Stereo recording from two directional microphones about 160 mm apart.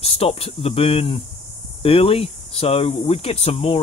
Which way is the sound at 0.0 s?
40° left (ahead or behind).